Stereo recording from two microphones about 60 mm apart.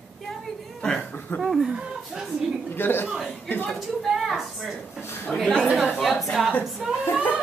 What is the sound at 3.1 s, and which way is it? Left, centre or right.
Speech, centre.